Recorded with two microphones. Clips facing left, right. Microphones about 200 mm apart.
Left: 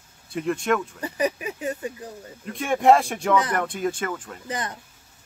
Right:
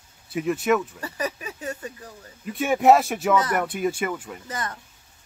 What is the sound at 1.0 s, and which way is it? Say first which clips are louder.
Speech: left 5 dB; 20° left (ahead or behind).